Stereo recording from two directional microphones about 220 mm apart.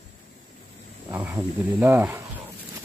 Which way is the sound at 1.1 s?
10° right (ahead or behind).